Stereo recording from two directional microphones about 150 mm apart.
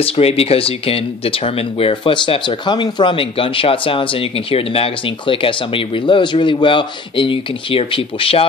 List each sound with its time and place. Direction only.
0.0 s speech: 40° left (ahead or behind)